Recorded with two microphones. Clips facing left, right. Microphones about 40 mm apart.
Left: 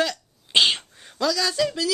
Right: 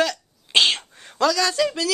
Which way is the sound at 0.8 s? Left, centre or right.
Centre.